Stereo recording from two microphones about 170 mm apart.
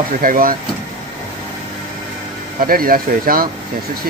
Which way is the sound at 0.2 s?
55° right (ahead or behind).